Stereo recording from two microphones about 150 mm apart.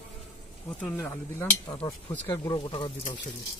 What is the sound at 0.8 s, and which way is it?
Speech, 5° left (ahead or behind).